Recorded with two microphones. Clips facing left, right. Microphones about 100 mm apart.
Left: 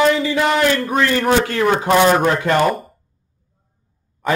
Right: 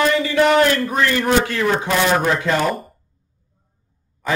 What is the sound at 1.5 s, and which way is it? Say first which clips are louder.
Speech: left 3 dB; 45° left (ahead or behind).